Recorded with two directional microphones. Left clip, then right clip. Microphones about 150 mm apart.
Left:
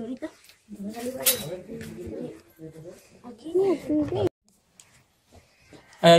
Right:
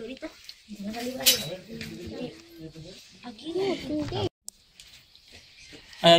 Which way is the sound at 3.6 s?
20° left (ahead or behind).